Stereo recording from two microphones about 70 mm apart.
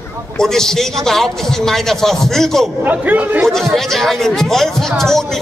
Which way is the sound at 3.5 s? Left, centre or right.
Centre.